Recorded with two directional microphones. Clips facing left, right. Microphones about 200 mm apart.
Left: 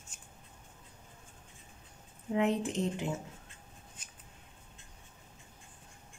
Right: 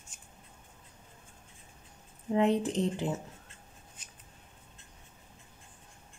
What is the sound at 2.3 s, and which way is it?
Speech, 35° right (ahead or behind).